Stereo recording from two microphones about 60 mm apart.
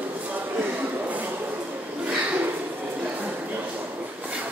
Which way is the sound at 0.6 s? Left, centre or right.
Right.